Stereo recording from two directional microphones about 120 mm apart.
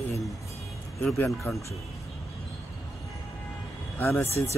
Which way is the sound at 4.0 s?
20° left (ahead or behind).